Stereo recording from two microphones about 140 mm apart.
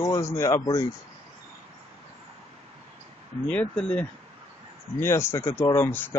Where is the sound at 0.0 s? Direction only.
25° left (ahead or behind).